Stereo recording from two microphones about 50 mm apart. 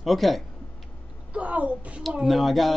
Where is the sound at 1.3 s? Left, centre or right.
Right.